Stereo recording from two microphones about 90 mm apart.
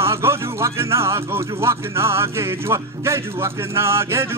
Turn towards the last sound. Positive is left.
turn(degrees=-30)  # may be behind; listen again after turning